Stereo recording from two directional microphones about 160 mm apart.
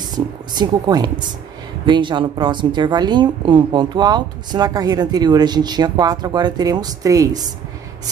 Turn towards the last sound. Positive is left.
turn(degrees=-20)  # may be behind; listen again after turning